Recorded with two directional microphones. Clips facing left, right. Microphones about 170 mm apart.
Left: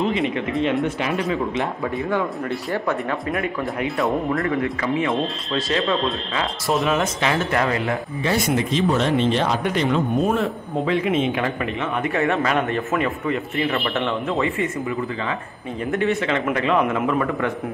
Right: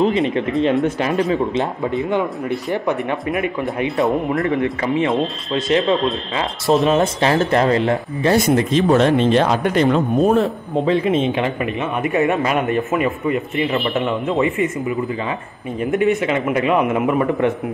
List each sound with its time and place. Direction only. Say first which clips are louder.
0.0 s speech: right 5 dB; 35° right (ahead or behind); by 3.9 s 20° right (ahead or behind)
5.5 s speech: right 6 dB; 20° right (ahead or behind); by 10.4 s 45° right (ahead or behind)
10.9 s speech: right 3 dB; 30° right (ahead or behind)
11.4 s a man's voice: right 3 dB; 15° right (ahead or behind)